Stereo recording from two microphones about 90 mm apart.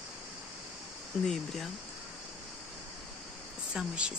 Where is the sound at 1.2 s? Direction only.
5° left (ahead or behind).